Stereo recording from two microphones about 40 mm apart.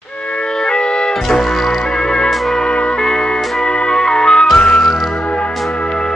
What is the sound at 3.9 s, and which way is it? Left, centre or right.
Music, centre.